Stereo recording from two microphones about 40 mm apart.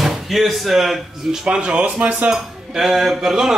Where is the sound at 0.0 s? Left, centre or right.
Centre; by 2.1 s right.